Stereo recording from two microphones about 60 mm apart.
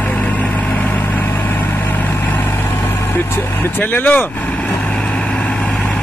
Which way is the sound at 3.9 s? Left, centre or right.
Left.